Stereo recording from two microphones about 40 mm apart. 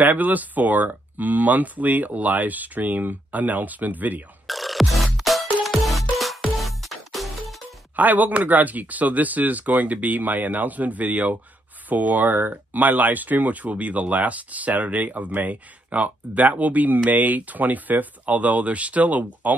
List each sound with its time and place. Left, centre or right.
0.0 s speech: right
4.5 s music: centre
7.9 s speech: right